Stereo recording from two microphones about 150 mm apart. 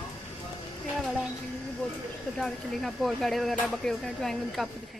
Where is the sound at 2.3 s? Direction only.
Centre (ahead or behind).